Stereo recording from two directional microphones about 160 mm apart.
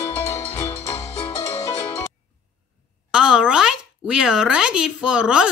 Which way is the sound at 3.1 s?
5° right (ahead or behind).